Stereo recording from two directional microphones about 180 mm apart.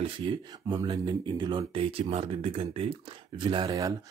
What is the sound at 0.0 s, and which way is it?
Speech, 25° right (ahead or behind).